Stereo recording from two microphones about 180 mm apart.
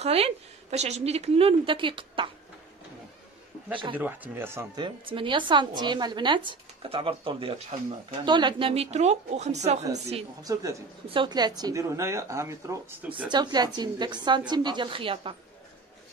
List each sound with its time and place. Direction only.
0.0 s a woman's voice: 35° right (ahead or behind)
3.9 s speech: 10° right (ahead or behind)
4.8 s a woman's voice: 30° right (ahead or behind)
10.4 s a woman's voice: 20° right (ahead or behind)